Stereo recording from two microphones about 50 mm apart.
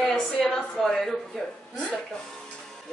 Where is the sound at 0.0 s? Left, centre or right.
Centre.